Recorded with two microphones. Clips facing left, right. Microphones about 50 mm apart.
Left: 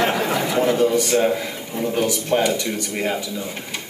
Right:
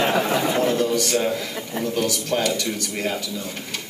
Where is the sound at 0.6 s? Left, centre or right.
Left.